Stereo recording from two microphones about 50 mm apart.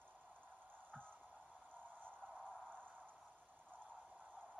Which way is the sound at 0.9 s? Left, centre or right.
Centre.